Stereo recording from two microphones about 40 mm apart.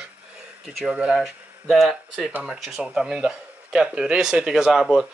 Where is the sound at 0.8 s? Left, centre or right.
Right.